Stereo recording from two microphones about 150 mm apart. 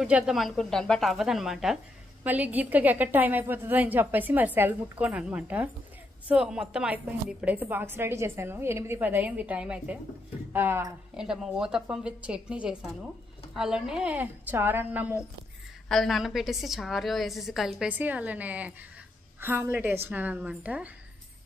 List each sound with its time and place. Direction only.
0.0 s a woman's voice: 5° right (ahead or behind)
11.1 s a woman's voice: 5° right (ahead or behind)
15.9 s a woman's voice: centre (ahead or behind)